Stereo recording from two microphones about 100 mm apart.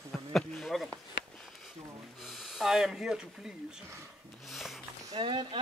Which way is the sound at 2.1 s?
Centre (ahead or behind).